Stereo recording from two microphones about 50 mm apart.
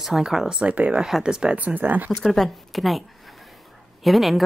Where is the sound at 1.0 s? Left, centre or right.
Centre.